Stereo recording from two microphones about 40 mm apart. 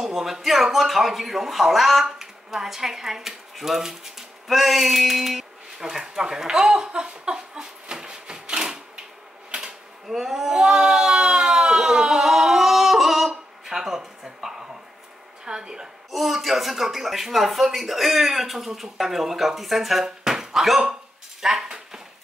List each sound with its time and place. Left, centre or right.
0.1 s speech: centre
2.0 s speech: centre
5.9 s speech: centre
6.9 s wood: centre
9.5 s a sound: centre
15.4 s speech: centre
16.1 s speech: centre
21.4 s dishes: centre